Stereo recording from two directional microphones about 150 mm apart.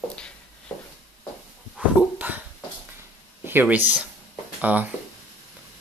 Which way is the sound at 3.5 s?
10° right (ahead or behind).